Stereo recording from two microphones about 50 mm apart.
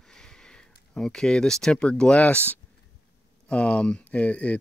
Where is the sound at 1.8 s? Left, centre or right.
Left.